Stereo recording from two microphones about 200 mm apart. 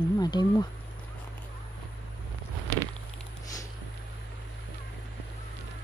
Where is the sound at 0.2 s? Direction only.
20° left (ahead or behind).